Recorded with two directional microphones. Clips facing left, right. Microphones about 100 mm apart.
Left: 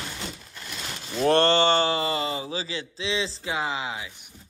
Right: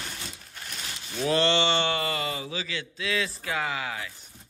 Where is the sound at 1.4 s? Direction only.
45° left (ahead or behind).